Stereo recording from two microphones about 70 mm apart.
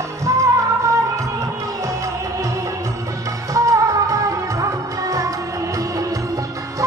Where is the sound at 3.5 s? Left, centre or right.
Right.